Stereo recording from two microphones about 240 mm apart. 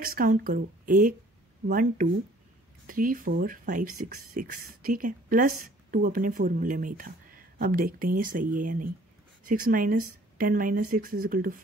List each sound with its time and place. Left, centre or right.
0.0 s speech: right